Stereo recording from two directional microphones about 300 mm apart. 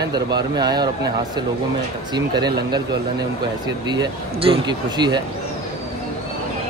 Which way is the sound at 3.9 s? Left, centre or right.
Centre.